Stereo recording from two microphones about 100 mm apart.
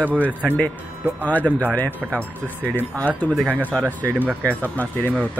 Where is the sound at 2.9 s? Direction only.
15° left (ahead or behind).